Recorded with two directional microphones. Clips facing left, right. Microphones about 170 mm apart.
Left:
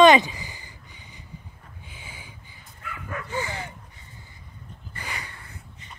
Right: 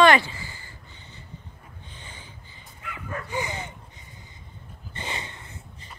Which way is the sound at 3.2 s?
15° right (ahead or behind).